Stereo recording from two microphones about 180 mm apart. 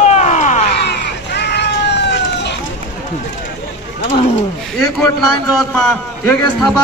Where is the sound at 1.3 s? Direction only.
70° left (ahead or behind).